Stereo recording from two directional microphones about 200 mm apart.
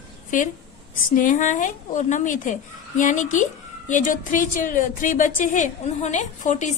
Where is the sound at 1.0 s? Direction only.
40° left (ahead or behind).